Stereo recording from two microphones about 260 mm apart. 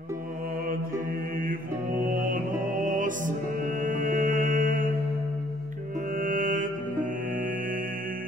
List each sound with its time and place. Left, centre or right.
2.0 s music: right
6.1 s music: right